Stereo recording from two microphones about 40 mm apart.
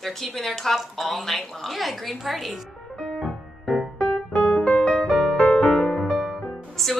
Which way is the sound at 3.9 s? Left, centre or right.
Left.